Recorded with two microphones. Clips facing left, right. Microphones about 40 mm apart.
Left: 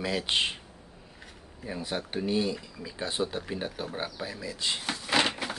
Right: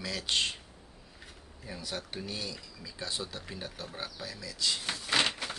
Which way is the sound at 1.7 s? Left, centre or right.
Left.